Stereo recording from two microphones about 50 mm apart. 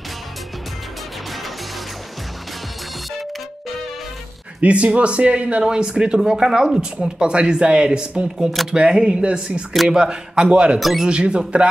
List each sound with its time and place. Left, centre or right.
4.6 s speech: right
10.8 s speech: centre
11.1 s speech: right